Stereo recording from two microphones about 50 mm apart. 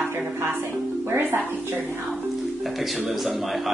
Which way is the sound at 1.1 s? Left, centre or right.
Right.